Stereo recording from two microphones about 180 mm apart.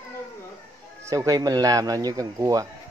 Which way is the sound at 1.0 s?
20° right (ahead or behind).